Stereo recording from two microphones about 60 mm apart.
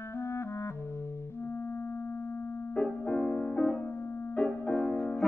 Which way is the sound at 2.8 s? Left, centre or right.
Centre.